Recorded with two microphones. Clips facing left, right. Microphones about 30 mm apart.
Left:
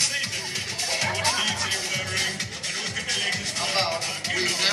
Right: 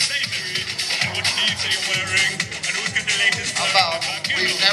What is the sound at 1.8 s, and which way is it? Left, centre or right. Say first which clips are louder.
Music: right 7 dB; right.